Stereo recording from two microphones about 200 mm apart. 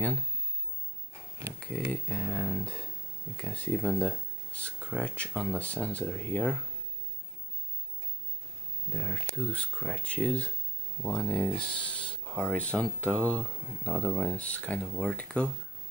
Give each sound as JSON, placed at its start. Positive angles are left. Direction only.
{"t": 1.7, "sound": "speech", "side_deg": 5}
{"t": 8.9, "sound": "speech", "side_deg": 5}